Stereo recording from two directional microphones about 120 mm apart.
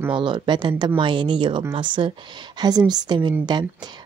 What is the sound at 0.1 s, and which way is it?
Speech, 40° right (ahead or behind).